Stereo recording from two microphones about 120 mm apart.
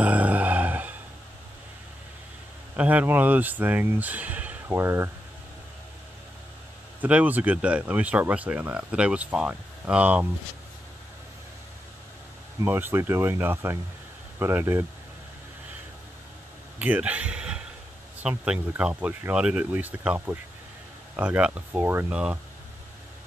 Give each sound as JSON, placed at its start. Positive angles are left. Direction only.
{"t": 0.0, "sound": "a sound", "side_deg": -10}
{"t": 2.7, "sound": "speech", "side_deg": -10}
{"t": 7.0, "sound": "speech", "side_deg": -10}
{"t": 12.6, "sound": "speech", "side_deg": -20}
{"t": 16.7, "sound": "speech", "side_deg": -15}